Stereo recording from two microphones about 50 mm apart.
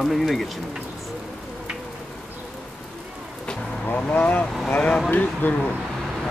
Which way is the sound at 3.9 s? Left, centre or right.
Left.